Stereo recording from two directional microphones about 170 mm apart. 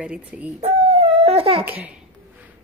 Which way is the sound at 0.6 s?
40° right (ahead or behind).